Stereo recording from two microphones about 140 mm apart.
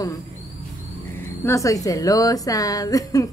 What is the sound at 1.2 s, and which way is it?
A woman's voice, 20° left (ahead or behind).